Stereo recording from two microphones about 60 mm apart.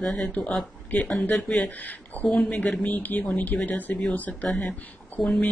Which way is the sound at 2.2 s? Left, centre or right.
Left.